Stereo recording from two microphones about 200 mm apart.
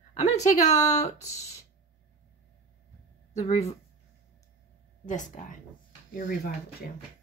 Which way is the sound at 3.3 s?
30° left (ahead or behind).